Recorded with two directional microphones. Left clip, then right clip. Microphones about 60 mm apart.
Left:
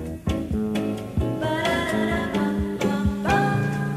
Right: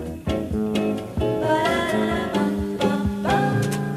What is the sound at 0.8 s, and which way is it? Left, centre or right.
Music, centre.